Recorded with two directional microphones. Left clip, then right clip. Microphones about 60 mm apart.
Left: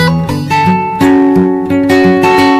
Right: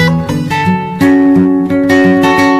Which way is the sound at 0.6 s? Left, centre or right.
Left.